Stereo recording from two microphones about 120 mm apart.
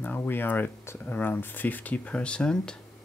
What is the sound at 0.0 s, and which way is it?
Speech, 15° left (ahead or behind).